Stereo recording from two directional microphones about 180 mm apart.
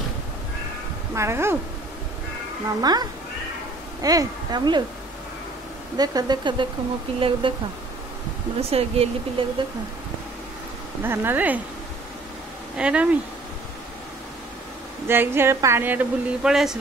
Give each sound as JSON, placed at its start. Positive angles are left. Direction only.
{"t": 1.1, "sound": "a woman's voice", "side_deg": -15}
{"t": 2.8, "sound": "speech", "side_deg": -20}
{"t": 5.9, "sound": "speech", "side_deg": -20}
{"t": 8.5, "sound": "speech", "side_deg": -35}
{"t": 11.0, "sound": "a woman's voice", "side_deg": -10}
{"t": 12.7, "sound": "a woman's voice", "side_deg": -5}
{"t": 15.0, "sound": "a woman's voice", "side_deg": -10}